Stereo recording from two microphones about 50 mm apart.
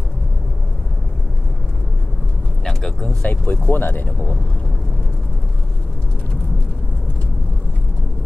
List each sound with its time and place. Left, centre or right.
2.6 s vehicle: centre
3.1 s speech: left
3.6 s speech: left